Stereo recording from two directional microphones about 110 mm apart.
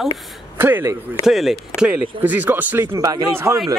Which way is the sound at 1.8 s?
15° right (ahead or behind).